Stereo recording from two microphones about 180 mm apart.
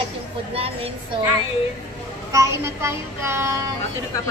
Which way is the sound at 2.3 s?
15° right (ahead or behind).